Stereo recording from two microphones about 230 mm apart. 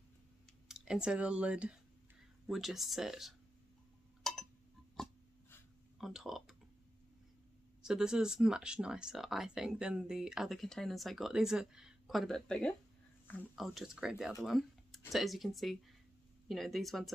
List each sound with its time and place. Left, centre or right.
0.7 s speech: centre
4.2 s tick-tock: centre
4.9 s a sound: centre
7.8 s speech: centre
14.4 s a sound: centre
15.1 s speech: centre